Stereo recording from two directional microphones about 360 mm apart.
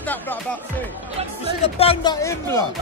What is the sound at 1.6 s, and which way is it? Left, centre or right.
Speech, centre.